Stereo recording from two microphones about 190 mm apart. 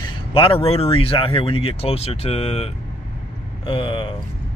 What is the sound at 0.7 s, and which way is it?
Speech, 30° left (ahead or behind).